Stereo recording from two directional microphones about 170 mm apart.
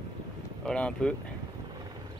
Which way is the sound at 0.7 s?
5° left (ahead or behind).